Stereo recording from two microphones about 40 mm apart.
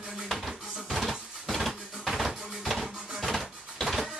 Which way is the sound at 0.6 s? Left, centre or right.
Centre.